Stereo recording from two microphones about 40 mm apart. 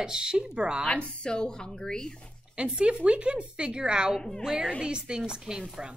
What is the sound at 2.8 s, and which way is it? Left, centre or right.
A woman's voice, right.